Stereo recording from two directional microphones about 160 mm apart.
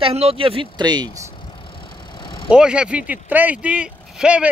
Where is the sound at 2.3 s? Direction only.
30° left (ahead or behind).